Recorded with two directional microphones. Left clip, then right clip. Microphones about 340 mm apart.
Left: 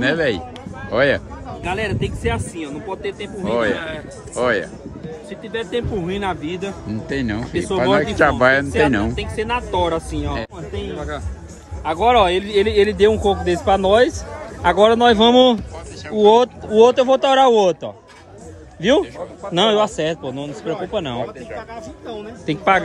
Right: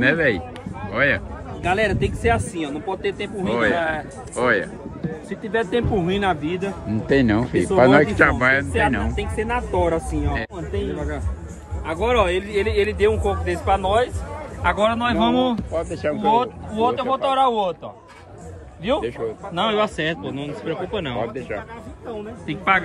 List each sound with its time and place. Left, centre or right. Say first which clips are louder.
0.0 s a man's voice: even; centre
1.6 s a man's voice: right 3 dB; centre
11.8 s a man's voice: left 5 dB; left
14.6 s a man's voice: left 7 dB; centre
15.7 s speech: right 4 dB; centre
16.3 s a man's voice: left 7 dB; centre
19.5 s a man's voice: left 6 dB; centre
22.5 s a man's voice: left 3 dB; centre